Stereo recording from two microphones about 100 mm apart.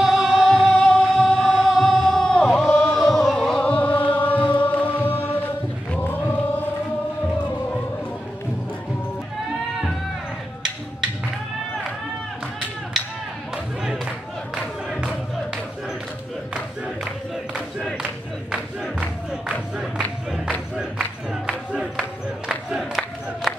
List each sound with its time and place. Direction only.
0.0 s music: centre (ahead or behind); by 4.4 s 15° left (ahead or behind)
4.4 s music: 60° left (ahead or behind)
4.6 s music: 15° left (ahead or behind)
5.9 s choir: 20° left (ahead or behind)
14.5 s crowd: 5° right (ahead or behind)
18.5 s crowd: 10° right (ahead or behind)
21.5 s crowd: 10° right (ahead or behind)